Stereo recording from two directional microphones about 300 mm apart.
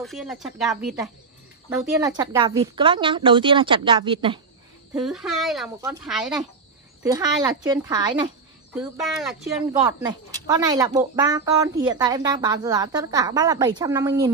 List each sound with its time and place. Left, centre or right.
0.0 s speech: centre
5.0 s speech: centre
7.0 s speech: centre
8.7 s speech: centre
9.7 s speech: centre